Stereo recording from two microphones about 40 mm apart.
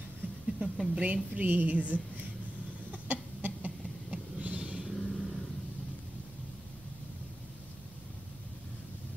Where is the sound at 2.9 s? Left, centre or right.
Right.